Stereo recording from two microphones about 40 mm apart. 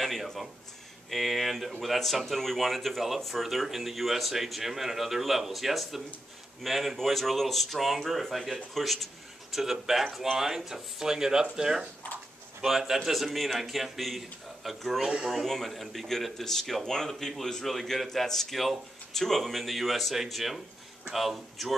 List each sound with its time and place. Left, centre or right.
0.0 s speech: centre
15.0 s speech: centre
15.4 s speech: centre